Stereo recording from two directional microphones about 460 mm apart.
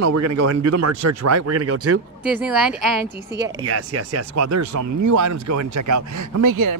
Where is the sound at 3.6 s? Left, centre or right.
Right.